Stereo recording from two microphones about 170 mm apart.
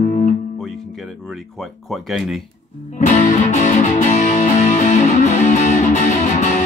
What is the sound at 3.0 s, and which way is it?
Music, 45° left (ahead or behind).